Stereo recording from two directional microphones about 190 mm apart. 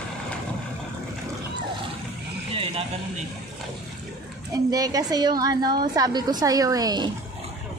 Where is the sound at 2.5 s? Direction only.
30° right (ahead or behind).